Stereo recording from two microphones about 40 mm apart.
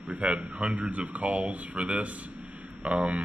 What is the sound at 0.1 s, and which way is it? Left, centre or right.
Speech, right.